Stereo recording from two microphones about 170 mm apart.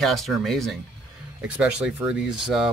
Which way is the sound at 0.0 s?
Centre (ahead or behind).